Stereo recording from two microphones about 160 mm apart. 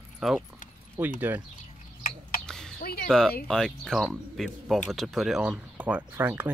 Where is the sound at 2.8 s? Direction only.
70° left (ahead or behind).